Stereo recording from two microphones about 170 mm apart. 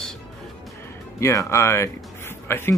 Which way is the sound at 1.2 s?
15° left (ahead or behind).